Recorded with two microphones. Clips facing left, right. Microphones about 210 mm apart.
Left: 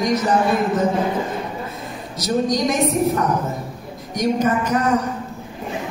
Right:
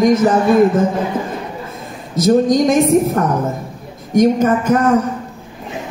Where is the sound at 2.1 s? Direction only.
50° right (ahead or behind).